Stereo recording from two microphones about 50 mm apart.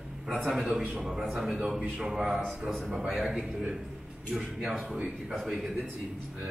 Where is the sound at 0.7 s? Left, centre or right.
Centre.